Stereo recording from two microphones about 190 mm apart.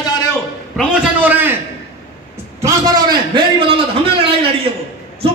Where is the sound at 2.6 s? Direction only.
20° right (ahead or behind).